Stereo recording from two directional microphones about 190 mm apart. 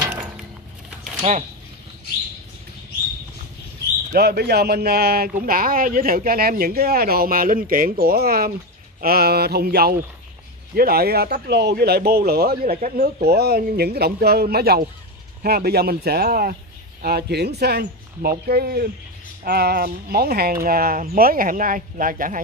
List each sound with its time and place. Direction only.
4.1 s speech: 55° right (ahead or behind)